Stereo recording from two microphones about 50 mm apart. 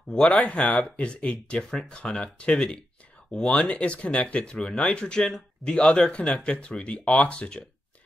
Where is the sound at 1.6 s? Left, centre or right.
Centre.